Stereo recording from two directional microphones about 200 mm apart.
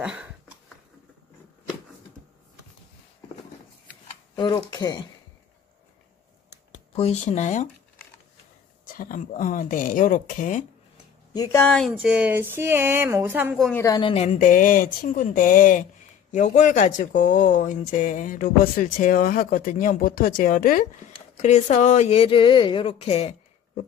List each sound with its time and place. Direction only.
0.0 s a woman's voice: 5° right (ahead or behind)
4.4 s speech: 20° left (ahead or behind)
6.9 s speech: 30° left (ahead or behind)
8.8 s speech: 45° left (ahead or behind)
11.3 s speech: 15° left (ahead or behind); by 13.6 s 10° right (ahead or behind)
13.6 s a woman's voice: 5° left (ahead or behind)
13.8 s speech: 20° left (ahead or behind)
14.1 s speech: 35° left (ahead or behind)